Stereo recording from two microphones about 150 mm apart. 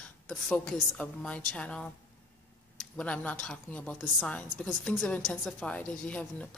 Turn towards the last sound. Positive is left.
turn(degrees=10)  # may be behind; listen again after turning